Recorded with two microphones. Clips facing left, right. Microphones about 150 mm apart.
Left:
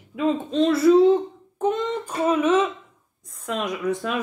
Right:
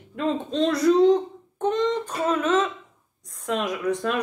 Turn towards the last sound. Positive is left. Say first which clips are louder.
# even
turn(degrees=0)  # may be behind; listen again after turning